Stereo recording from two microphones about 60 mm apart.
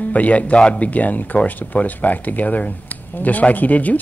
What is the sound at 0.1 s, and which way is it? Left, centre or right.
Speech, left.